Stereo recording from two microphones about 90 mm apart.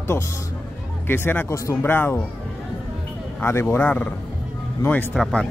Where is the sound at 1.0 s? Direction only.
25° left (ahead or behind).